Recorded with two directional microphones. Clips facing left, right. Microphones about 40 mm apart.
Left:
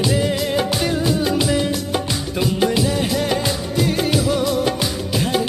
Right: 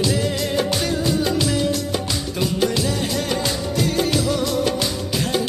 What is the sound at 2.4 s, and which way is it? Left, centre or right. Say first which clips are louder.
Music: left 3 dB; centre.